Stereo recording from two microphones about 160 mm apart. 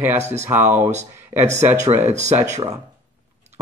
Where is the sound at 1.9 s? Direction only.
45° right (ahead or behind).